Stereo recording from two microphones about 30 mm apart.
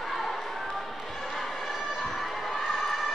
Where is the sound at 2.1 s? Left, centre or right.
Centre.